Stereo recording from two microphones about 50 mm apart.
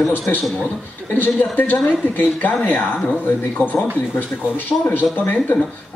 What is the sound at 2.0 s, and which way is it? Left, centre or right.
A man's voice, left.